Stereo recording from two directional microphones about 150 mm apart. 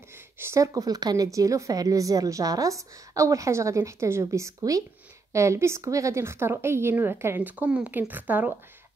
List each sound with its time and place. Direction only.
0.4 s a woman's voice: 20° right (ahead or behind)